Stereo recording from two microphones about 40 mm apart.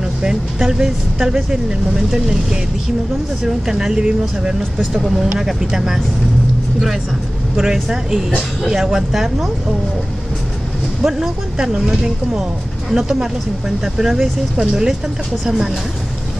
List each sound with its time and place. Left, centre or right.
0.2 s speech: centre
4.9 s speech: centre
7.5 s speech: centre
11.1 s speech: centre